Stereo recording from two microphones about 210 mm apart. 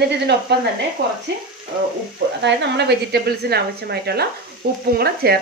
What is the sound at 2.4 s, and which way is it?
Speech, 55° right (ahead or behind).